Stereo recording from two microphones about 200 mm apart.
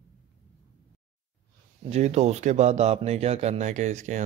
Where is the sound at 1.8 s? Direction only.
35° right (ahead or behind).